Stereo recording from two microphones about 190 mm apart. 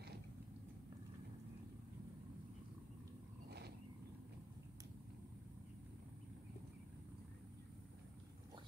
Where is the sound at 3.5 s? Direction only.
60° right (ahead or behind).